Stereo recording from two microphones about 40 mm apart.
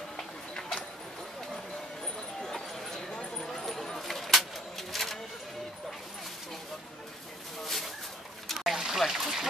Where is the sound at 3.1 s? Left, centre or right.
Centre.